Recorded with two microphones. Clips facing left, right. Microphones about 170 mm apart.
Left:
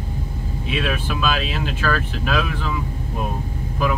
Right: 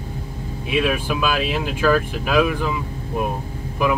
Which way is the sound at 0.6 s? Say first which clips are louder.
Right 4 dB; 10° right (ahead or behind).